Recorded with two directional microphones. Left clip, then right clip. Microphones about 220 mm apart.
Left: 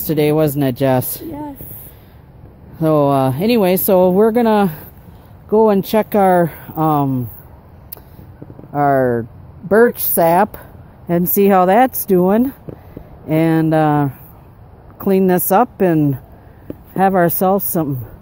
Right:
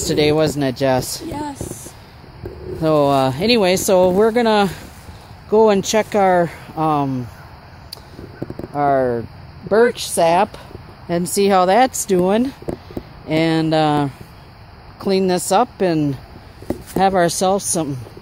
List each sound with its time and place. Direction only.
0.0 s speech: 20° left (ahead or behind)
2.8 s speech: 20° left (ahead or behind)
8.7 s speech: 30° left (ahead or behind)